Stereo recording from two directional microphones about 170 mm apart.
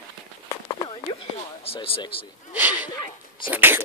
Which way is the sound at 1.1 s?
35° left (ahead or behind).